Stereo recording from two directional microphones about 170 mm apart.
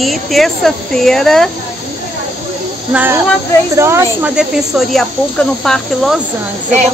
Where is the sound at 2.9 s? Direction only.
10° right (ahead or behind).